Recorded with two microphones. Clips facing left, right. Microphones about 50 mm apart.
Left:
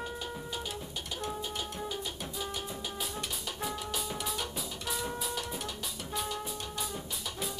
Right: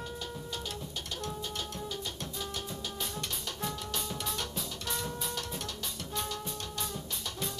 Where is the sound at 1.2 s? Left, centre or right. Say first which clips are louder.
Left 2 dB; centre.